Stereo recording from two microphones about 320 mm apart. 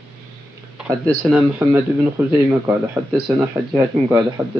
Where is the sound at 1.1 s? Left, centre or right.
Centre.